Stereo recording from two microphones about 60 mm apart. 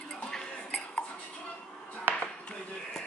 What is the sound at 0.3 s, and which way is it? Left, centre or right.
Cutlery, centre.